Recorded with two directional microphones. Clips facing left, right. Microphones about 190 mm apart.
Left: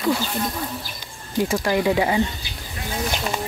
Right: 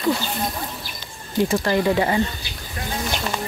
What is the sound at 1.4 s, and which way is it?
Speech, 10° left (ahead or behind).